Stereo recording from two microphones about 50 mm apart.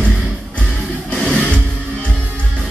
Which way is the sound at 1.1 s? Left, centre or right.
Centre.